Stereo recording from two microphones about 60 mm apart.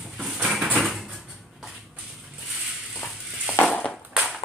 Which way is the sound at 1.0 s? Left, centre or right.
Centre.